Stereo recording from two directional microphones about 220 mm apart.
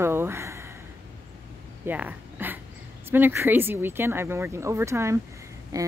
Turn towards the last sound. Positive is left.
turn(degrees=-15)  # may be behind; listen again after turning